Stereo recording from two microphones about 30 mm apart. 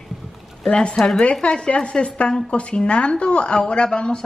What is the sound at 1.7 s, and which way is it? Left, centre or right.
Speech, left.